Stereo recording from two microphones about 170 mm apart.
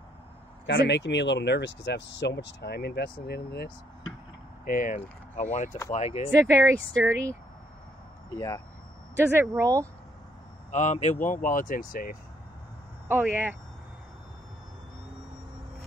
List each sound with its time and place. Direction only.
0.7 s speech: 90° left; by 3.7 s 65° left (ahead or behind)
4.6 s speech: 55° left (ahead or behind)
6.4 s speech: 15° right (ahead or behind)
8.4 s speech: 20° left (ahead or behind)
9.1 s speech: 15° right (ahead or behind)
10.7 s speech: 45° left (ahead or behind)
13.1 s speech: 10° right (ahead or behind)